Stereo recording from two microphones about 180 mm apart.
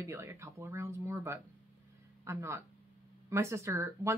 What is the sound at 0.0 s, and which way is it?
Speech, 15° right (ahead or behind).